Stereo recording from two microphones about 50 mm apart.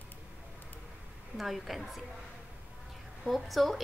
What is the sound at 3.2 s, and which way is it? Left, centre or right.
Speech, centre.